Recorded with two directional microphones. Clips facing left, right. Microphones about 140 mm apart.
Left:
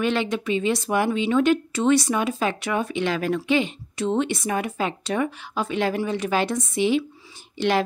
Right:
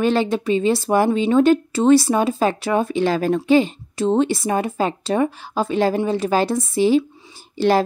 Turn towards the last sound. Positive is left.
turn(degrees=-35)  # may be behind; listen again after turning